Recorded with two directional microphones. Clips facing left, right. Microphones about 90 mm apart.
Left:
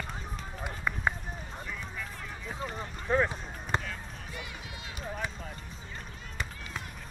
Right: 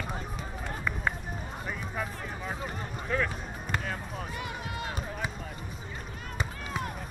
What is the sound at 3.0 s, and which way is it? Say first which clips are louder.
Run: left 3 dB; 25° left (ahead or behind).